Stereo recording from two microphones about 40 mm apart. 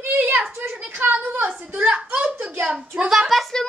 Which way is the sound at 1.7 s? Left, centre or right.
Right.